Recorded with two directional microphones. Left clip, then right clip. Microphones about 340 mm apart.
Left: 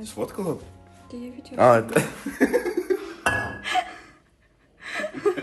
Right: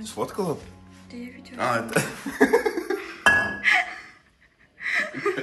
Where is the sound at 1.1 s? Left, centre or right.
Left.